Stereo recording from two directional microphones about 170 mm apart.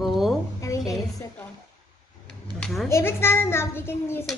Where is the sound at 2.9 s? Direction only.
15° left (ahead or behind).